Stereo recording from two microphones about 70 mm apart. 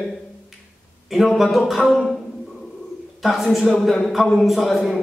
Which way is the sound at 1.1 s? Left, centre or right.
Centre.